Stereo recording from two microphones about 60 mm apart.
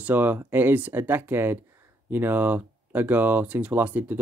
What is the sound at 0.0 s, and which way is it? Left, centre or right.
Speech, right.